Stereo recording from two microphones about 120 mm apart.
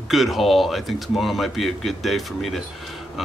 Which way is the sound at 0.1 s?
Centre (ahead or behind).